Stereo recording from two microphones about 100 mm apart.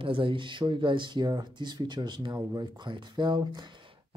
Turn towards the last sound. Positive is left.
turn(degrees=-45)  # may be behind; listen again after turning